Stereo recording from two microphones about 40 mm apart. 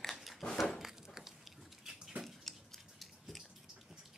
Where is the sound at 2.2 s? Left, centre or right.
Centre.